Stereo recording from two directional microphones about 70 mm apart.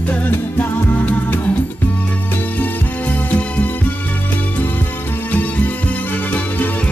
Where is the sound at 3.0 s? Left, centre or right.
Left.